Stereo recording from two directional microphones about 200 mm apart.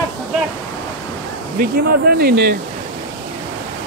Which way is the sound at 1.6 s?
50° right (ahead or behind).